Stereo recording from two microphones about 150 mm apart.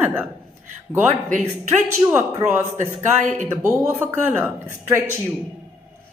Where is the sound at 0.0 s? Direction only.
15° right (ahead or behind).